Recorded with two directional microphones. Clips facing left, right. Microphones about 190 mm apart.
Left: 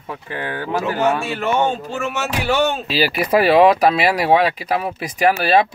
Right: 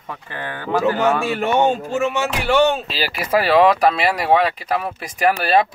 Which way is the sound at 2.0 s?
5° left (ahead or behind).